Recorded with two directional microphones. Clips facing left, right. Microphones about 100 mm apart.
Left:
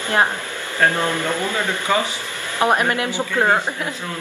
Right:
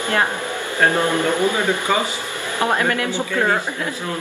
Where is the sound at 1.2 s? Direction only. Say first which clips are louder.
Right 4 dB; 15° right (ahead or behind).